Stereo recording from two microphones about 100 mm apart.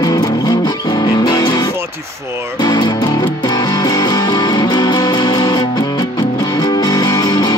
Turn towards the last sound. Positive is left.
turn(degrees=40)  # may be behind; listen again after turning